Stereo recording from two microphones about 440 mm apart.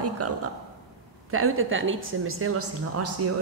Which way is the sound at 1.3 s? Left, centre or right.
Right.